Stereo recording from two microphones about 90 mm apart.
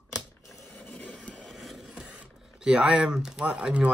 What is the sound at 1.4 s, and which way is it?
Speech, centre (ahead or behind).